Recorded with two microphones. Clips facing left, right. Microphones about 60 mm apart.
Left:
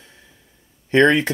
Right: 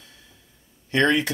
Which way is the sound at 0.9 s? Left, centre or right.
Left.